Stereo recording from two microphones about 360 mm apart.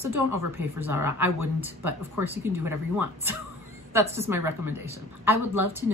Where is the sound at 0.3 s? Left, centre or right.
Centre.